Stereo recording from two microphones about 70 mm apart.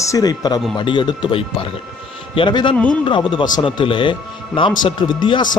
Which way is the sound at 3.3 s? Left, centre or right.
Left.